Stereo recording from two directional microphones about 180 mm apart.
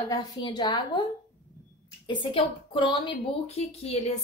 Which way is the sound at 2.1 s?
30° left (ahead or behind).